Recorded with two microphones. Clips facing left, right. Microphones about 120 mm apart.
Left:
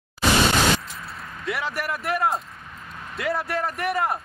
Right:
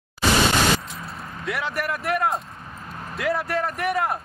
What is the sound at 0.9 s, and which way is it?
A man's voice, centre (ahead or behind).